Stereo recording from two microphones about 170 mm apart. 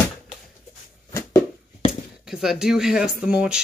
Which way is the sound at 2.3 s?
Centre (ahead or behind).